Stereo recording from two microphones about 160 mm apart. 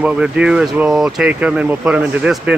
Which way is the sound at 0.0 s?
5° right (ahead or behind).